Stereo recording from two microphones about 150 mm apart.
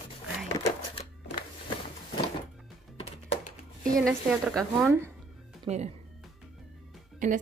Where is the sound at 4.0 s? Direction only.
Centre (ahead or behind).